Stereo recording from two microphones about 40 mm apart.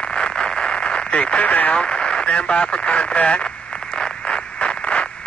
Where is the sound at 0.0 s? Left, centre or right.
Left.